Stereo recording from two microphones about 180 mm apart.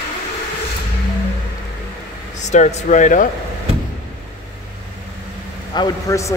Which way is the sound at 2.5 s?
40° left (ahead or behind).